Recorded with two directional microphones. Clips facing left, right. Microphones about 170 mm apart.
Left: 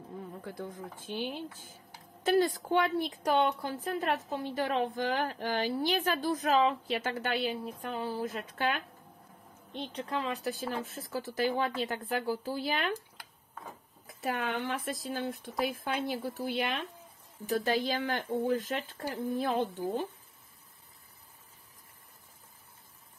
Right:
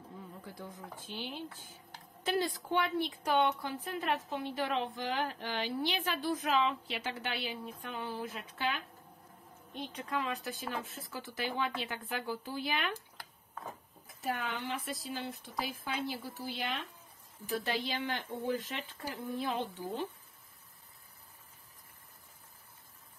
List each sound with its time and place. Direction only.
2.2 s a woman's voice: 45° left (ahead or behind)
9.7 s speech: 30° left (ahead or behind)
14.2 s speech: 65° left (ahead or behind)
17.6 s a woman's voice: 45° left (ahead or behind)